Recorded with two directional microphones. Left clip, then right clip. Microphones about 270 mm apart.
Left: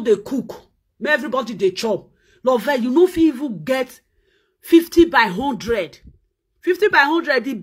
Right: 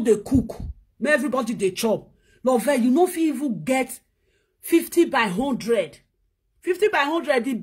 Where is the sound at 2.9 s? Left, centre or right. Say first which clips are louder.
Left 5 dB; centre.